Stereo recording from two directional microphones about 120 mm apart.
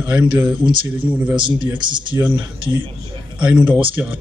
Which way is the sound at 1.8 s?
40° right (ahead or behind).